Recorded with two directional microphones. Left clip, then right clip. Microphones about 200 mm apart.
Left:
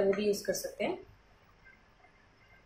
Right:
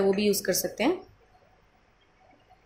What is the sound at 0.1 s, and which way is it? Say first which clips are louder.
Speech: right 5 dB; 50° right (ahead or behind).